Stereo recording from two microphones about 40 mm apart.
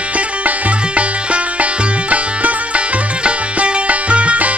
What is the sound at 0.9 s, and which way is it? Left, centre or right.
Music, right.